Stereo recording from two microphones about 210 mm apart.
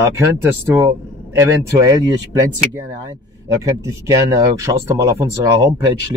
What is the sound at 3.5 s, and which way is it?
Speech, 15° right (ahead or behind).